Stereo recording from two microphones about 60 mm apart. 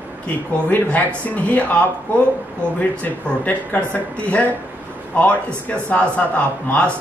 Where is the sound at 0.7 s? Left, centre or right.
Left.